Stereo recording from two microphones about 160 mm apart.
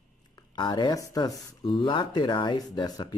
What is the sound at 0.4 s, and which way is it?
Speech, 25° left (ahead or behind).